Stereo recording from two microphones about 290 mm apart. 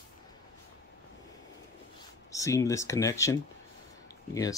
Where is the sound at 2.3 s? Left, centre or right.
Centre.